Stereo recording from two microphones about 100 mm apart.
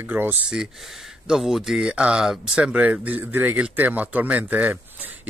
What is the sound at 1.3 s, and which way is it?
Speech, centre (ahead or behind).